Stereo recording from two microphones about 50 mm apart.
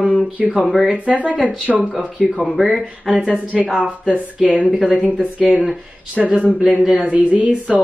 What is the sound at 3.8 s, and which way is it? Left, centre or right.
Speech, centre.